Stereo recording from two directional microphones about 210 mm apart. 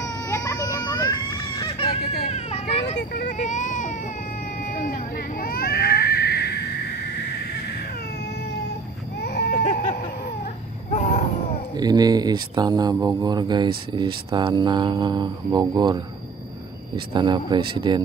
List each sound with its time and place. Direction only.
0.0 s baby cry: 15° left (ahead or behind)
2.3 s vehicle: 30° left (ahead or behind)
4.7 s baby cry: 45° left (ahead or behind)
9.5 s a sound: 35° left (ahead or behind)
11.7 s speech: 20° right (ahead or behind)
17.1 s speech: 20° right (ahead or behind)